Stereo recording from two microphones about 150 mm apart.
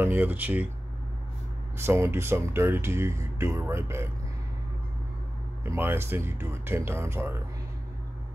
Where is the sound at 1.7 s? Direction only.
15° right (ahead or behind).